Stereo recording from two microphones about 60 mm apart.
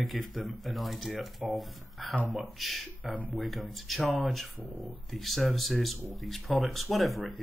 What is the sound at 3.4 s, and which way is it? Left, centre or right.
Speech, centre.